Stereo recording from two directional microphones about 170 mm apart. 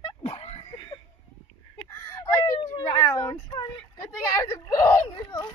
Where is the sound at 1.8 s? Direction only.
15° left (ahead or behind).